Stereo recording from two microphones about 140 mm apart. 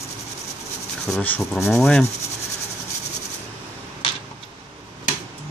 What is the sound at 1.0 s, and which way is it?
Speech, 10° left (ahead or behind).